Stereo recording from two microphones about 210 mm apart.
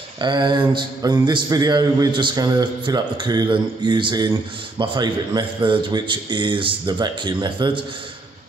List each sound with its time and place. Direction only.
0.2 s a man's voice: 20° right (ahead or behind)